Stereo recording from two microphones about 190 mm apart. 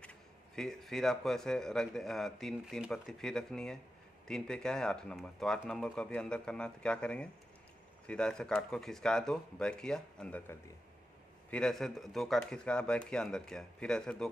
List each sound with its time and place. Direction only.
0.6 s a man's voice: centre (ahead or behind)